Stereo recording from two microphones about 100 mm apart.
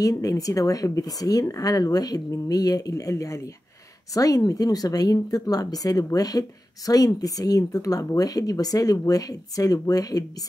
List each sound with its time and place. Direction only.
0.0 s speech: 35° left (ahead or behind)